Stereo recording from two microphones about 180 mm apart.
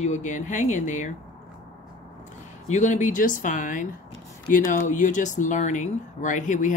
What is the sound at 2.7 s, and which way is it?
Speech, 40° left (ahead or behind).